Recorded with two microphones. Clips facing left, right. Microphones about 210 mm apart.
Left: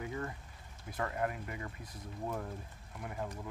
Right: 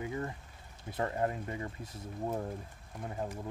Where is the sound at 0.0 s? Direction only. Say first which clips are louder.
Right 3 dB; 25° right (ahead or behind).